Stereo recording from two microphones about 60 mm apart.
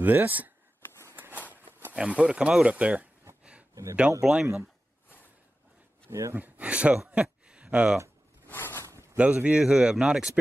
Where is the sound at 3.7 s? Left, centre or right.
Right.